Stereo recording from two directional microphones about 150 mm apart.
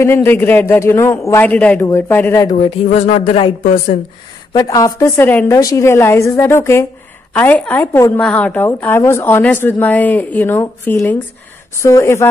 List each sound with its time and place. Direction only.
0.0 s a woman's voice: 15° left (ahead or behind)
2.5 s speech: 45° left (ahead or behind)
3.6 s speech: 55° left (ahead or behind)
4.5 s a woman's voice: 25° left (ahead or behind)